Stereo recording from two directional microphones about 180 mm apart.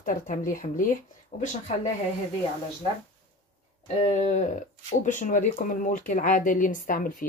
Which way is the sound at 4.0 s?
35° left (ahead or behind).